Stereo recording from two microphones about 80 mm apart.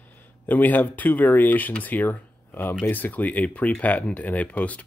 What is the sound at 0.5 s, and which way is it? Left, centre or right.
Speech, left.